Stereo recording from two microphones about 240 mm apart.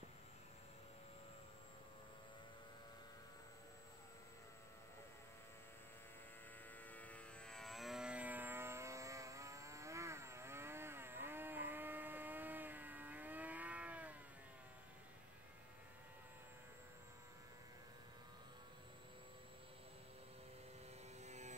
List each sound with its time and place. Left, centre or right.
6.9 s vehicle: centre
21.2 s mains hum: right